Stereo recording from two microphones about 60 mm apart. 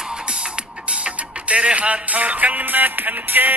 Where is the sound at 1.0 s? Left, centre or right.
Centre.